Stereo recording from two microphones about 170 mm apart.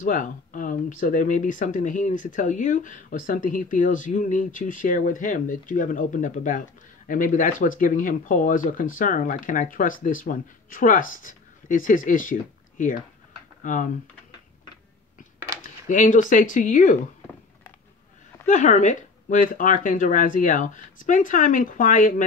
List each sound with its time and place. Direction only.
0.0 s speech: 50° left (ahead or behind)
15.6 s speech: 50° left (ahead or behind)
18.5 s speech: 45° left (ahead or behind)